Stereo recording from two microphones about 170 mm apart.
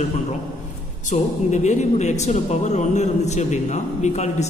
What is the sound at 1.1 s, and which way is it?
Speech, 45° left (ahead or behind).